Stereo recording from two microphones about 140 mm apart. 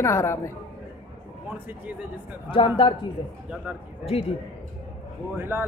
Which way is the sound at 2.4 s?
35° left (ahead or behind).